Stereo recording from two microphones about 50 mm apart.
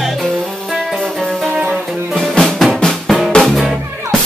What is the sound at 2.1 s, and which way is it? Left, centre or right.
Music, centre.